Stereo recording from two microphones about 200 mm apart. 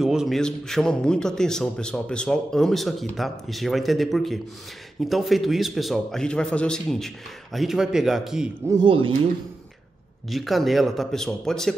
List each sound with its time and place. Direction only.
0.0 s a man's voice: centre (ahead or behind)
8.6 s speech: 25° right (ahead or behind)
10.3 s a man's voice: centre (ahead or behind)